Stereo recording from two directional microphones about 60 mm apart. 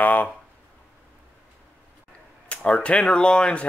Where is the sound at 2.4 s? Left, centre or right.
Centre.